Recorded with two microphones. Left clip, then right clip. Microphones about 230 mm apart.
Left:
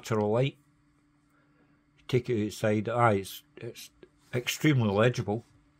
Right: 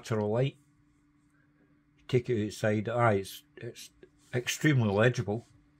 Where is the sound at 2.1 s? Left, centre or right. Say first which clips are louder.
Left 1 dB; centre.